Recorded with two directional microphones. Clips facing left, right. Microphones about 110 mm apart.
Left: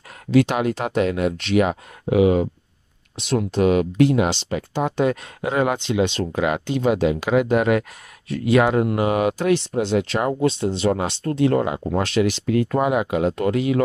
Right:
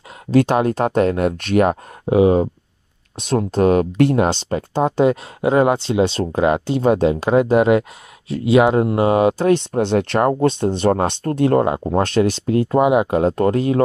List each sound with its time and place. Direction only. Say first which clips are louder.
0.3 s speech: right 3 dB; 40° right (ahead or behind)
2.0 s speech: right 3 dB; 35° right (ahead or behind)
9.7 s speech: right 3 dB; 55° right (ahead or behind); by 12.6 s 35° right (ahead or behind)
12.7 s speech: right 9 dB; 20° right (ahead or behind)
13.1 s speech: right 4 dB; 40° right (ahead or behind)